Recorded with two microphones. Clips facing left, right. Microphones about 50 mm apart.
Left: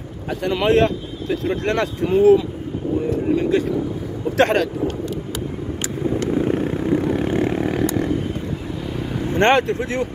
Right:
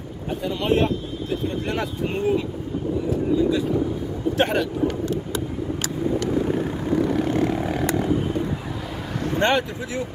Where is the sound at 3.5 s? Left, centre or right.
Left.